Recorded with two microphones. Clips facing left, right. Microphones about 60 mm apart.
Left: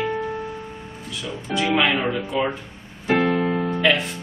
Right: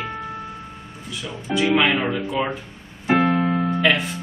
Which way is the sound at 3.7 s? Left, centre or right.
Centre.